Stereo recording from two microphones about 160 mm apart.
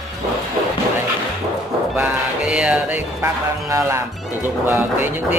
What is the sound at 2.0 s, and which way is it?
Speech, 5° right (ahead or behind).